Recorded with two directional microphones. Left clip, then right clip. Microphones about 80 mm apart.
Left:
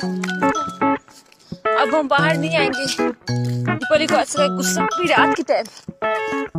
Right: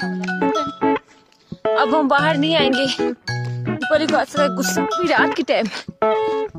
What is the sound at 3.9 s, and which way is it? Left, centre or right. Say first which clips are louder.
Speech: left 1 dB; centre.